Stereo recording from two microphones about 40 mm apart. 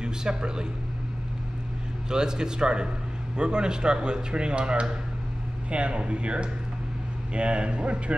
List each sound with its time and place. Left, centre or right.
0.0 s speech: centre
2.0 s speech: centre